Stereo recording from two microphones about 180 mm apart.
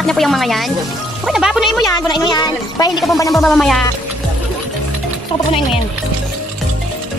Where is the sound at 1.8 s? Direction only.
20° left (ahead or behind).